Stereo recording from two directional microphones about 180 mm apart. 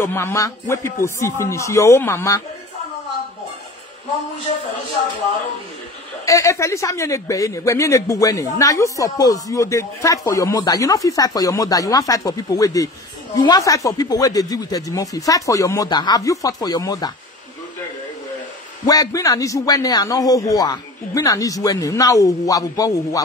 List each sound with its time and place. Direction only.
0.0 s speech: 15° left (ahead or behind)
6.2 s a man's voice: 15° left (ahead or behind)
18.9 s a man's voice: 20° left (ahead or behind)